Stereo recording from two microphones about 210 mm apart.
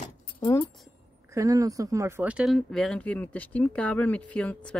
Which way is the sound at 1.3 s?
15° right (ahead or behind).